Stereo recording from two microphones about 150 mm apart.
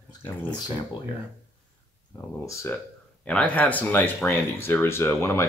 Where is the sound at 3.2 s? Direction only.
10° left (ahead or behind).